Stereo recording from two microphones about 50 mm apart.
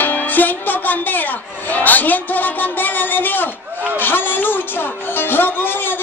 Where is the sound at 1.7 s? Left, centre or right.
Left.